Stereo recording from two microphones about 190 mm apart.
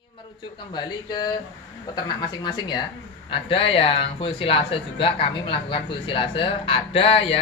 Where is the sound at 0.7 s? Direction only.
20° left (ahead or behind).